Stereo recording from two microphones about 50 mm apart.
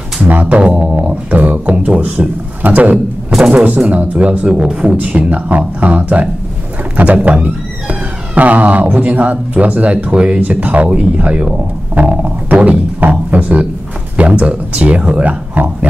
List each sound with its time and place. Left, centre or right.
0.3 s speech: right
0.7 s music: right
2.0 s speech: right
3.3 s a sound: centre
3.5 s speech: right
4.6 s speech: centre
4.9 s speech: right
15.5 s speech: right